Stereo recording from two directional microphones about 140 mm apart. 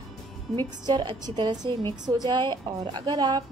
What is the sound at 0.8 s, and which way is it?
A woman's voice, 30° right (ahead or behind).